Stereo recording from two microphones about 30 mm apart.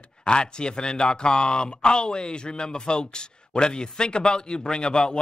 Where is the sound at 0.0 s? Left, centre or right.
Left.